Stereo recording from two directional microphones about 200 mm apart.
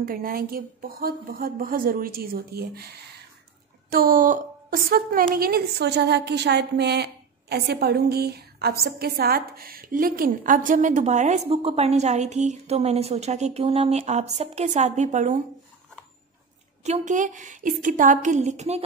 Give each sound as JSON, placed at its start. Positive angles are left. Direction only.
{"t": 0.0, "sound": "a woman's voice", "side_deg": -45}
{"t": 3.9, "sound": "a woman's voice", "side_deg": -45}
{"t": 16.8, "sound": "a woman's voice", "side_deg": -35}